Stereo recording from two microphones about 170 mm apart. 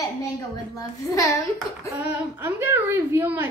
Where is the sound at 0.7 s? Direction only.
20° left (ahead or behind).